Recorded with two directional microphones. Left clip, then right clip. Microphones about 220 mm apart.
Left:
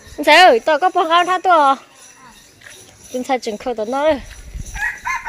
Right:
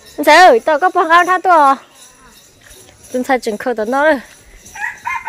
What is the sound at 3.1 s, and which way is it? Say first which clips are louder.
Speech: right 4 dB; 25° right (ahead or behind).